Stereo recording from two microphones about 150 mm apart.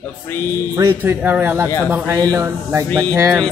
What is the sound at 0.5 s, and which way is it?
Speech, 20° right (ahead or behind).